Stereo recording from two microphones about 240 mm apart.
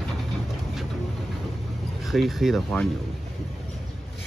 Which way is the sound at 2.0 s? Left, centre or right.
Centre.